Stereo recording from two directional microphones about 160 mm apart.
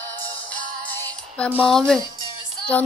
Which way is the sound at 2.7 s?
10° left (ahead or behind).